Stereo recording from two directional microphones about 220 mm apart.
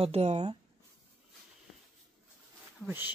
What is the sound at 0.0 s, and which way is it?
Speech, 30° right (ahead or behind).